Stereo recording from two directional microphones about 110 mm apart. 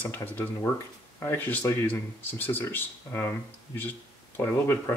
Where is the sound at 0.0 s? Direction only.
15° left (ahead or behind).